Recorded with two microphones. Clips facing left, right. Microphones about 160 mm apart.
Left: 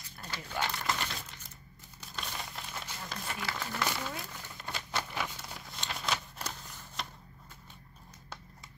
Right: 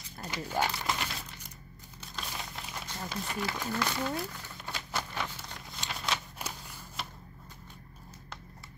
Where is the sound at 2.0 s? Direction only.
Centre (ahead or behind).